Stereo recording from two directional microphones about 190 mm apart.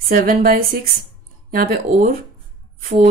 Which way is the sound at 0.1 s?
50° right (ahead or behind).